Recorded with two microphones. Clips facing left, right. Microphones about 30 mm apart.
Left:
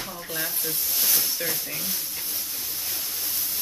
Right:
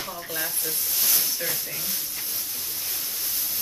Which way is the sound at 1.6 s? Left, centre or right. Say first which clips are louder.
Left 1 dB; centre.